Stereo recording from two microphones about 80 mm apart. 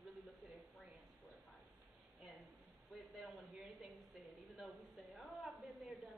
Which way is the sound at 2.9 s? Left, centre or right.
Centre.